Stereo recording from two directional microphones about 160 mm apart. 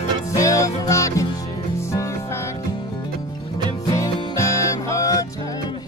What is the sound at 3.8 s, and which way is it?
Music, 25° left (ahead or behind).